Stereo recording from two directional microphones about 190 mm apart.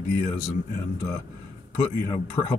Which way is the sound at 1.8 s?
25° left (ahead or behind).